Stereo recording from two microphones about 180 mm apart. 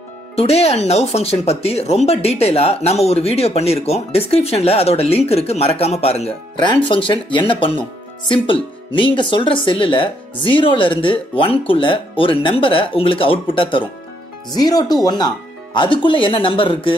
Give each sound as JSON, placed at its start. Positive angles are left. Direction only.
{"t": 0.4, "sound": "speech", "side_deg": 35}